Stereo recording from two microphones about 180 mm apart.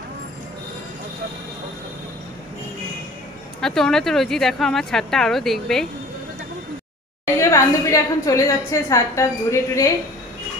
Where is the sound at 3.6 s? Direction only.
5° left (ahead or behind).